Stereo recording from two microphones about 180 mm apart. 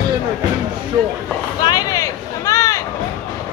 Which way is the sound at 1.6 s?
20° left (ahead or behind).